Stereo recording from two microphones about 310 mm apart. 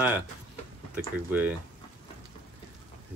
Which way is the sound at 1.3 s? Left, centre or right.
Centre.